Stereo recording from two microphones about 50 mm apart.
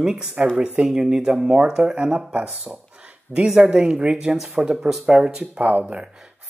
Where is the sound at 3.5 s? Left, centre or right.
Centre.